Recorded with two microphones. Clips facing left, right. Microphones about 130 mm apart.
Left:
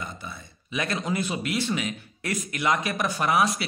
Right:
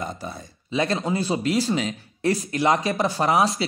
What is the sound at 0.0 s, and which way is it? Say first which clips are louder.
A man's voice: right 6 dB; 40° right (ahead or behind).